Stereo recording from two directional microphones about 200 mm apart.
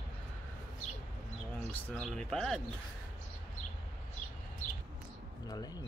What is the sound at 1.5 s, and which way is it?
Speech, 5° left (ahead or behind).